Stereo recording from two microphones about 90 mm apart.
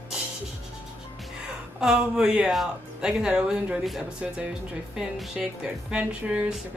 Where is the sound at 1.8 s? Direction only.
5° right (ahead or behind).